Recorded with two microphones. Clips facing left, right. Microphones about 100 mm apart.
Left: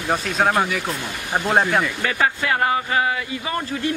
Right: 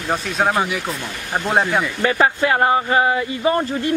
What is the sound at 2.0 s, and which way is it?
Speech, 30° right (ahead or behind).